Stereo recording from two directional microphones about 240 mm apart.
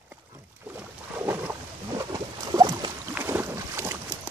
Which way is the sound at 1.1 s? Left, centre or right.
Centre.